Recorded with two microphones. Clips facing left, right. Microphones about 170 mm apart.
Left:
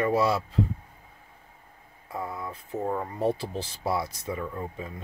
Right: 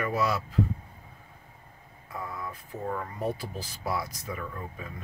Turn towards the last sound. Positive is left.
turn(degrees=25)  # may be behind; listen again after turning